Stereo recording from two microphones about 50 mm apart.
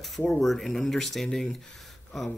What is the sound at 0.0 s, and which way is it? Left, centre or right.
Speech, centre.